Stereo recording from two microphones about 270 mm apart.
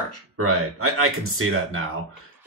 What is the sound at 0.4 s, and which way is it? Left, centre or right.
Speech, right.